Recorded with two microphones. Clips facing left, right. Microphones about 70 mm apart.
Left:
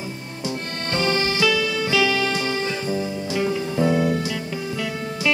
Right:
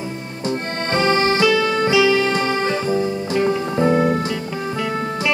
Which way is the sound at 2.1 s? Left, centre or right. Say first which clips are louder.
Right 5 dB; right.